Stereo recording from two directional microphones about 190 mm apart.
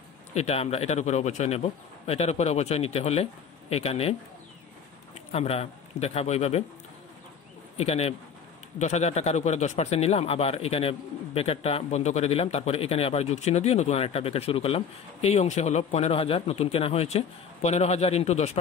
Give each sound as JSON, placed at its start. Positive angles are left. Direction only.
{"t": 0.3, "sound": "speech", "side_deg": 35}
{"t": 5.3, "sound": "speech", "side_deg": 30}
{"t": 7.7, "sound": "speech", "side_deg": 35}